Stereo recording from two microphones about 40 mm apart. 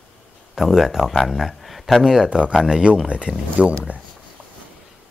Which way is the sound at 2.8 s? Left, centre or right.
Right.